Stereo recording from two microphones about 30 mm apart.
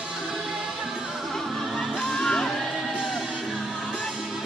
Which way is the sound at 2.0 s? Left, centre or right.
Left.